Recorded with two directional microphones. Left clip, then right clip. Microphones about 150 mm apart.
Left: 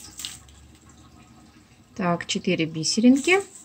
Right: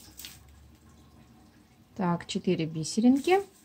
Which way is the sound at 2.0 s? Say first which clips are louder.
Left 6 dB; 30° right (ahead or behind).